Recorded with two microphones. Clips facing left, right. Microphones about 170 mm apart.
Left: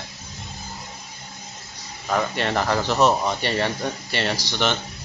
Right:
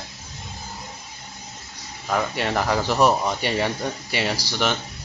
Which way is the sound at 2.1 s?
5° right (ahead or behind).